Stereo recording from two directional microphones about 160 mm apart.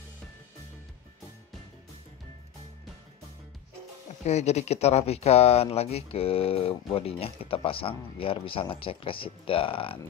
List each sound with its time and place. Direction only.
4.2 s speech: 45° left (ahead or behind)